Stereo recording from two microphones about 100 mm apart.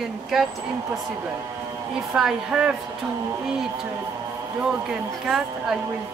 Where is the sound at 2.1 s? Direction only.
5° right (ahead or behind).